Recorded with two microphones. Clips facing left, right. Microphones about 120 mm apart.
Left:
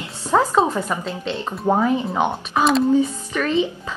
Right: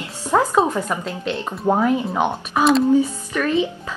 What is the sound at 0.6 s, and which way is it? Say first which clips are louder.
Speech: even; 10° left (ahead or behind).